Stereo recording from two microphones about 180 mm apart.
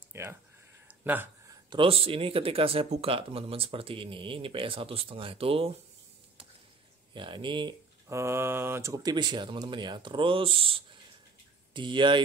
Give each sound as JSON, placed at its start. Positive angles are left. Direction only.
{"t": 0.1, "sound": "a sound", "side_deg": -15}
{"t": 1.7, "sound": "speech", "side_deg": -30}
{"t": 7.2, "sound": "speech", "side_deg": -25}
{"t": 8.1, "sound": "speech", "side_deg": -15}